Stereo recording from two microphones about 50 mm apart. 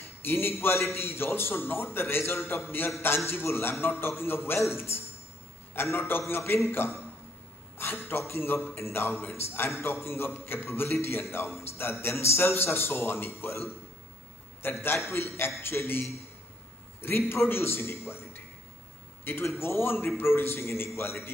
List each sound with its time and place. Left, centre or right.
0.0 s a man's voice: left
8.2 s a man's voice: left
14.6 s a man's voice: left
15.0 s a man's voice: left
19.3 s a man's voice: left